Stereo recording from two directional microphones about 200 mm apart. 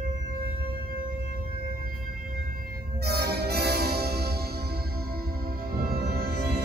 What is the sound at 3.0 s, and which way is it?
Music, 55° right (ahead or behind).